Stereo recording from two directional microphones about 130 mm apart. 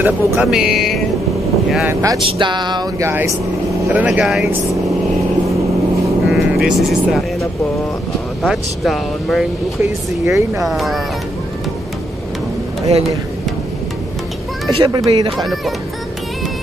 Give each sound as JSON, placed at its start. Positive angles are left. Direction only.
{"t": 0.0, "sound": "speech", "side_deg": -5}
{"t": 1.9, "sound": "speech", "side_deg": -20}
{"t": 2.3, "sound": "a sound", "side_deg": -35}
{"t": 3.0, "sound": "speech", "side_deg": -20}
{"t": 6.2, "sound": "speech", "side_deg": 0}
{"t": 9.8, "sound": "speech", "side_deg": -20}
{"t": 10.6, "sound": "speech", "side_deg": 0}
{"t": 14.8, "sound": "a sound", "side_deg": -35}
{"t": 15.3, "sound": "speech", "side_deg": 0}